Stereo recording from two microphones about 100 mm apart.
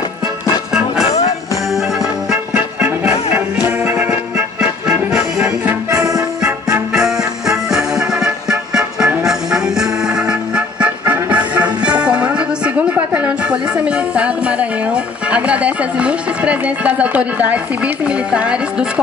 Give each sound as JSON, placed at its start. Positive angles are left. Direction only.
{"t": 1.0, "sound": "music", "side_deg": 90}
{"t": 2.3, "sound": "music", "side_deg": -15}
{"t": 5.9, "sound": "music", "side_deg": -35}
{"t": 6.9, "sound": "music", "side_deg": -5}